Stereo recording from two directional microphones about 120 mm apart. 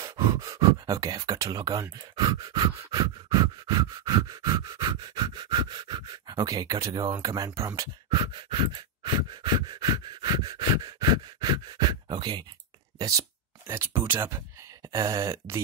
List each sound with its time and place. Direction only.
0.0 s speech: 30° right (ahead or behind)
13.7 s speech: 20° right (ahead or behind)
14.9 s speech: 30° right (ahead or behind)